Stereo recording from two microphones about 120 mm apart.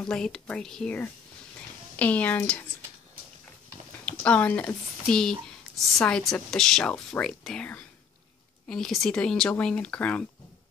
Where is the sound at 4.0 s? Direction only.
10° left (ahead or behind).